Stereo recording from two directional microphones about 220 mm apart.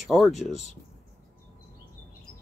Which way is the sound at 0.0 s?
Centre (ahead or behind).